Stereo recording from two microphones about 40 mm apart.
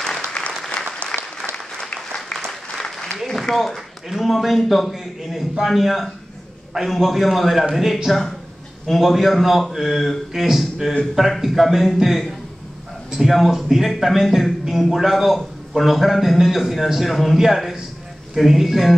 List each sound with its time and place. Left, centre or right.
0.4 s applause: centre
2.4 s applause: centre
3.3 s a man's voice: centre